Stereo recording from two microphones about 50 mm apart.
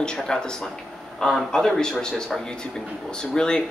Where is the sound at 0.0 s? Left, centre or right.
Centre.